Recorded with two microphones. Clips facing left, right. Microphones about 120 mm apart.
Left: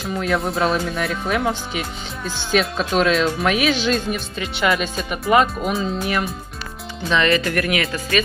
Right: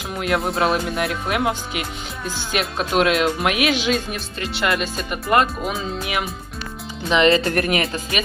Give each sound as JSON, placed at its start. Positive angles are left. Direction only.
{"t": 0.0, "sound": "speech", "side_deg": -5}
{"t": 7.1, "sound": "speech", "side_deg": -25}